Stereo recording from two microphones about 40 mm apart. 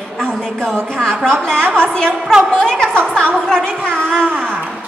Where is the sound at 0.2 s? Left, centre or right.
Centre.